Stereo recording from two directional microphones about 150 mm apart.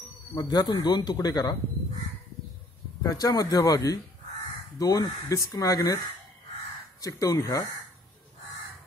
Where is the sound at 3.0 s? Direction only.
25° left (ahead or behind).